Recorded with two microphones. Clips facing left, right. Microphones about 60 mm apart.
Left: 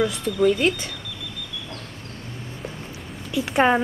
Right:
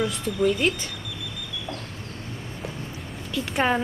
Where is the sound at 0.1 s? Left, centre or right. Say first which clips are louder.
Left 3 dB; centre.